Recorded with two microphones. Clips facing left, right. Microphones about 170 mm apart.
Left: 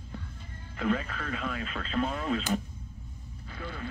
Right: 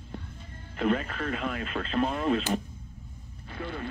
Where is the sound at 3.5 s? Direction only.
55° right (ahead or behind).